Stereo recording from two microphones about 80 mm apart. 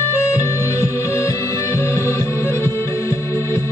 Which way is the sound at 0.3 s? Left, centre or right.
Left.